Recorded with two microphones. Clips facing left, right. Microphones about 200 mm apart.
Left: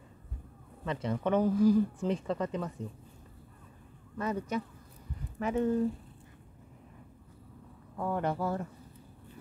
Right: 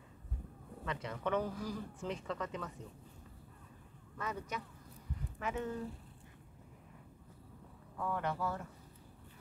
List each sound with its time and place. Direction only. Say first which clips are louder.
0.8 s speech: left 7 dB; 30° left (ahead or behind)
4.2 s speech: left 9 dB; 30° left (ahead or behind)
8.0 s speech: left 6 dB; 35° left (ahead or behind)